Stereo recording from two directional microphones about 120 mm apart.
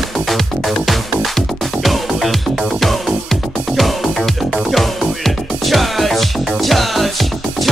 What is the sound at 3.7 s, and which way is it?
Music, centre (ahead or behind).